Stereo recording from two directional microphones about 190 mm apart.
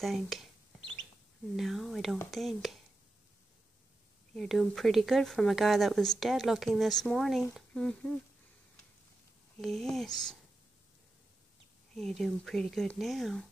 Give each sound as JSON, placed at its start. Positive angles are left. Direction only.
{"t": 0.0, "sound": "speech", "side_deg": 0}
{"t": 1.6, "sound": "speech", "side_deg": 0}
{"t": 4.3, "sound": "speech", "side_deg": 0}
{"t": 9.6, "sound": "speech", "side_deg": 0}
{"t": 11.9, "sound": "speech", "side_deg": 0}